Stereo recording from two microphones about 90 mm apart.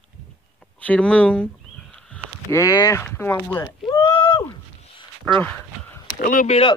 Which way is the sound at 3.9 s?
40° left (ahead or behind).